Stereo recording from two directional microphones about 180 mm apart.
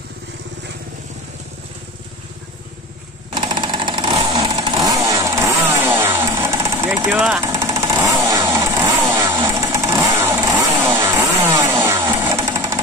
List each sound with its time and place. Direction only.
3.3 s vehicle: 25° right (ahead or behind)